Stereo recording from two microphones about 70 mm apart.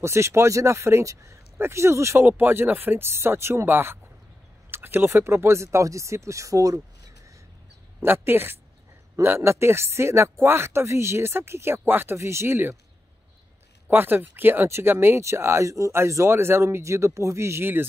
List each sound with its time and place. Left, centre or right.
0.0 s speech: right
2.2 s speech: right
8.0 s speech: right
13.8 s speech: right